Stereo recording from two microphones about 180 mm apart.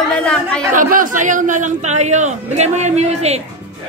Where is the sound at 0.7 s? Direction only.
50° right (ahead or behind).